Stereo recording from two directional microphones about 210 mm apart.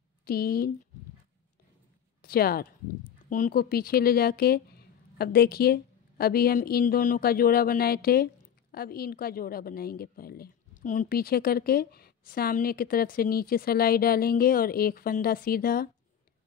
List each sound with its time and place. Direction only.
0.2 s speech: 45° left (ahead or behind)
2.2 s a woman's voice: 45° left (ahead or behind)